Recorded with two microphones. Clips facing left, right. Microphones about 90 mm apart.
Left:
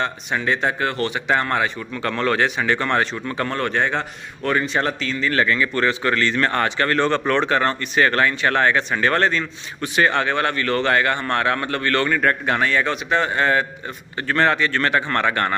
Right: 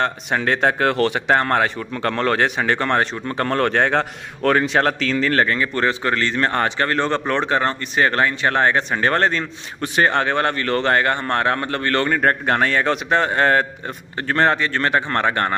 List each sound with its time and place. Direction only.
0.0 s speech: 60° right (ahead or behind); by 5.3 s 80° right
5.3 s a man's voice: 40° right (ahead or behind)
14.2 s speech: 30° right (ahead or behind)